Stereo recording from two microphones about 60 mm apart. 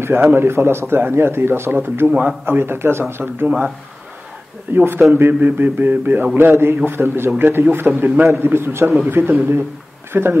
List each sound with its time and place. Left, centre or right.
0.0 s a man's voice: right
2.0 s speech: centre
2.4 s a man's voice: right
4.7 s a man's voice: right